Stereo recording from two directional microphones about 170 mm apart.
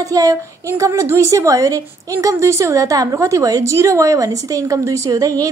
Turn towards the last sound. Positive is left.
turn(degrees=-20)  # may be behind; listen again after turning